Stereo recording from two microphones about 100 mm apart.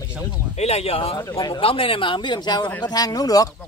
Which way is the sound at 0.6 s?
90° left.